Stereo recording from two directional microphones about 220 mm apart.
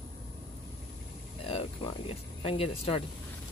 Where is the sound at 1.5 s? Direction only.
25° left (ahead or behind).